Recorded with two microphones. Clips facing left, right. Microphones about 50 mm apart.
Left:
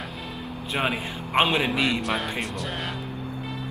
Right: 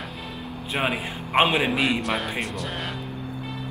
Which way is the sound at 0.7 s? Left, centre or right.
Centre.